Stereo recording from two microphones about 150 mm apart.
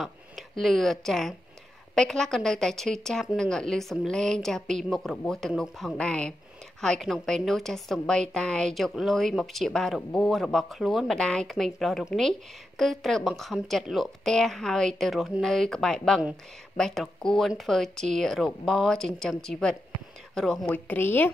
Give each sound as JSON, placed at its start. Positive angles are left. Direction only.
{"t": 0.0, "sound": "a woman's voice", "side_deg": 0}